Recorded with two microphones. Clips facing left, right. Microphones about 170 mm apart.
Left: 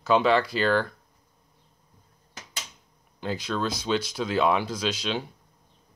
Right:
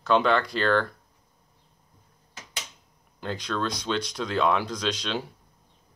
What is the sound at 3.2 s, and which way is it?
Speech, 5° left (ahead or behind).